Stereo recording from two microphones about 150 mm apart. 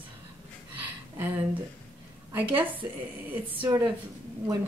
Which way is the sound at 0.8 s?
10° right (ahead or behind).